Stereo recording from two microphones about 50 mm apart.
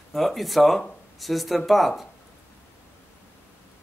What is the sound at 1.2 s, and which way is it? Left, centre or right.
Speech, centre.